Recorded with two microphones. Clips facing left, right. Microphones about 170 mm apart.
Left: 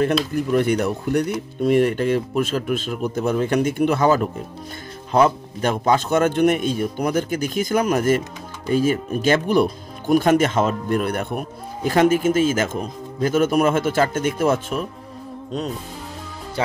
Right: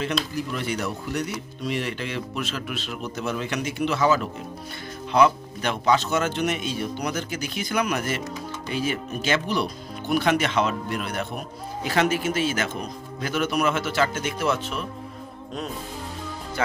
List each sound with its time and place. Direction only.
0.3 s speech: 55° left (ahead or behind)
16.6 s speech: 30° left (ahead or behind)